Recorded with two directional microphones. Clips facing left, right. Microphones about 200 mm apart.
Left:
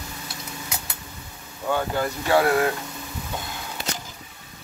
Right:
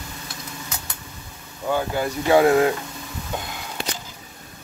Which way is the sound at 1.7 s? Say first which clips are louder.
Right 1 dB; 10° right (ahead or behind).